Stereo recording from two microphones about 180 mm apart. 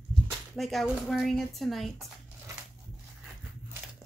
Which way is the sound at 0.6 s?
Centre (ahead or behind).